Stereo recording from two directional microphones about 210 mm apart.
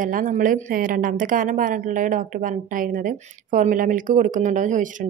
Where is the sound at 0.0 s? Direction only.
40° right (ahead or behind).